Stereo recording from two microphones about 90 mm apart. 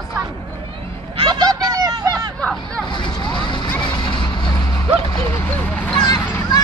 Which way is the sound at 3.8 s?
60° left (ahead or behind).